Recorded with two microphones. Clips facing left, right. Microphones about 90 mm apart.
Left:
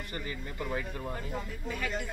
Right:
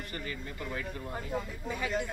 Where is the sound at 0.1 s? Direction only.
20° left (ahead or behind).